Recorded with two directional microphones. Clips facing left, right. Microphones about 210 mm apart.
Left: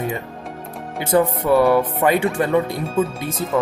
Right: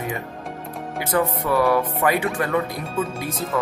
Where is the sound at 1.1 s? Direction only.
25° left (ahead or behind).